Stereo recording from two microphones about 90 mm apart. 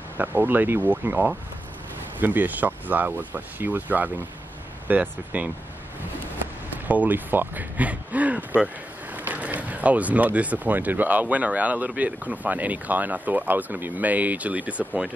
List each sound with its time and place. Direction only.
0.2 s speech: 20° right (ahead or behind)
6.9 s speech: 20° right (ahead or behind)